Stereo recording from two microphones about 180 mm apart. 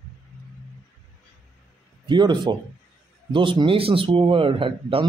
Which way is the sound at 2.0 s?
25° right (ahead or behind).